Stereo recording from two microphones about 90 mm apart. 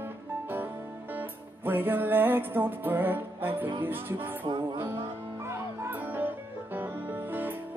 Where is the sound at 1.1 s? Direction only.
20° right (ahead or behind).